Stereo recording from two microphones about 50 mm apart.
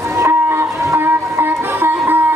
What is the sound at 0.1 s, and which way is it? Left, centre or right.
Train, right.